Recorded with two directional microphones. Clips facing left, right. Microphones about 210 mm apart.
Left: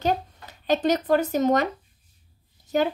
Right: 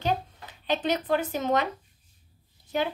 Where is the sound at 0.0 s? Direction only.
40° left (ahead or behind).